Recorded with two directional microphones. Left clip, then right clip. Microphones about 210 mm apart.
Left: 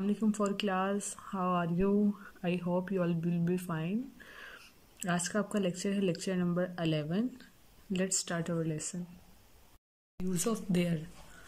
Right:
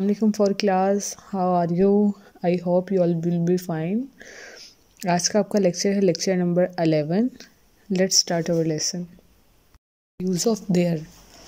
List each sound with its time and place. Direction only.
0.0 s speech: 25° right (ahead or behind)
10.2 s speech: 20° right (ahead or behind)